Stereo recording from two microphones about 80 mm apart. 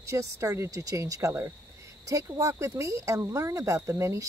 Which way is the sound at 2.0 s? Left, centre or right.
Right.